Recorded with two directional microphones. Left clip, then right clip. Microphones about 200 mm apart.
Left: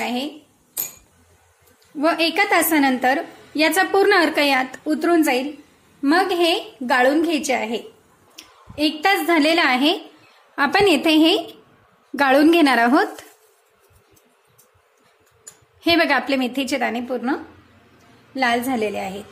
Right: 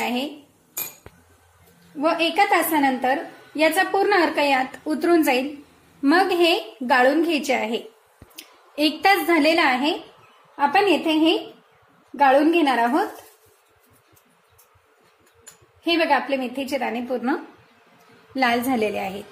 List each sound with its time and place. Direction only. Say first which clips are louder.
0.0 s cutlery: even; 10° left (ahead or behind)
2.0 s a woman's voice: left 1 dB; 20° left (ahead or behind)
4.7 s a woman's voice: left 1 dB; 10° left (ahead or behind)
8.4 s a sound: even; centre (ahead or behind)
9.2 s a woman's voice: left 1 dB; 15° left (ahead or behind)
9.7 s a woman's voice: left 3 dB; 30° left (ahead or behind)
15.8 s a woman's voice: left 2 dB; 35° left (ahead or behind)
16.8 s a woman's voice: left 2 dB; 20° left (ahead or behind)
18.3 s a woman's voice: left 1 dB; 5° left (ahead or behind)